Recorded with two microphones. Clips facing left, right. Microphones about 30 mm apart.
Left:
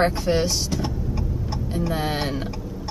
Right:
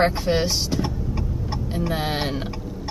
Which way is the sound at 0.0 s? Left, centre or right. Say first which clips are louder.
Even; centre.